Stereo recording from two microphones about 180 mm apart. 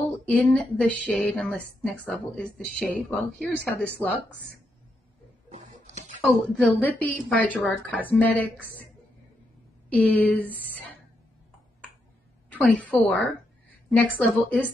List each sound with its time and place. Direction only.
0.3 s a woman's voice: 5° left (ahead or behind)
5.5 s printer: 40° right (ahead or behind)
6.2 s a woman's voice: 5° left (ahead or behind)
9.8 s speech: 10° left (ahead or behind)
12.4 s a woman's voice: 10° left (ahead or behind)